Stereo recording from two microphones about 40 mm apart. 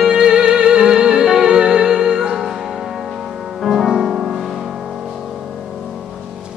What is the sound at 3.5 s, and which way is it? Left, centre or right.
Music, centre.